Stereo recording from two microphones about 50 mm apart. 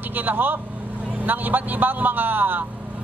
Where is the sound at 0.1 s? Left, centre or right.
Right.